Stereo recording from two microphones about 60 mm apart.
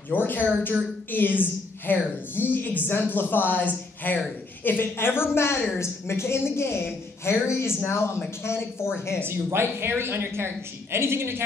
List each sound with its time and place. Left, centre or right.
0.1 s a woman's voice: left
9.2 s a woman's voice: right